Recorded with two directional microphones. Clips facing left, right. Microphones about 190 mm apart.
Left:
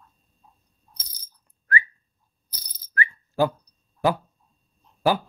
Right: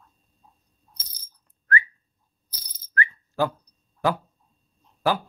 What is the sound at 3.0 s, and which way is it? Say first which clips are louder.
Whistling: left 2 dB; 15° left (ahead or behind).